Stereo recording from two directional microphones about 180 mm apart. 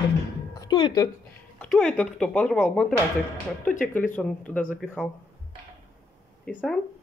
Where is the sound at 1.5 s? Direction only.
5° left (ahead or behind).